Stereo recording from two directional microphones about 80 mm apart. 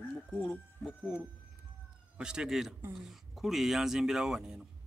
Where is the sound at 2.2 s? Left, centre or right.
Centre.